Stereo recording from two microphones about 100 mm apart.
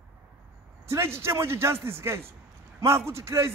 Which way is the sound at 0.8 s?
25° right (ahead or behind).